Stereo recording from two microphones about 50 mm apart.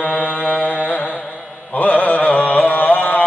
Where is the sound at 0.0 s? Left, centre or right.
Left.